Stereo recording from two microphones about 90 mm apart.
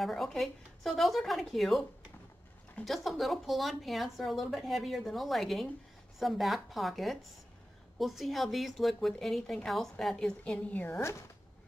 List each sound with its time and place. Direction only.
0.0 s a woman's voice: centre (ahead or behind)
10.9 s speech: 30° left (ahead or behind)